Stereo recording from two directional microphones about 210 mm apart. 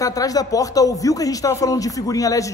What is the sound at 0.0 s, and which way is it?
Speech, 15° left (ahead or behind).